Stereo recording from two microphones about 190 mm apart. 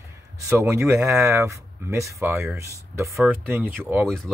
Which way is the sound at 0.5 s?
15° right (ahead or behind).